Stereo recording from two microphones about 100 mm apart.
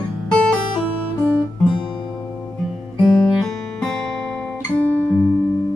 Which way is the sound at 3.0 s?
5° left (ahead or behind).